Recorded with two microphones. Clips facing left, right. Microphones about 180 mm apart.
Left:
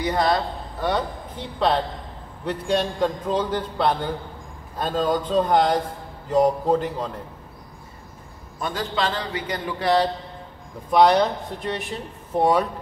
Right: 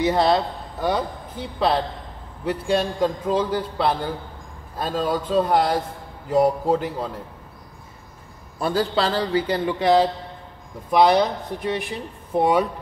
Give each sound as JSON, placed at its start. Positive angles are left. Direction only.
{"t": 0.0, "sound": "a man's voice", "side_deg": -25}
{"t": 0.8, "sound": "a man's voice", "side_deg": -10}
{"t": 8.5, "sound": "a man's voice", "side_deg": -35}
{"t": 10.9, "sound": "a man's voice", "side_deg": -5}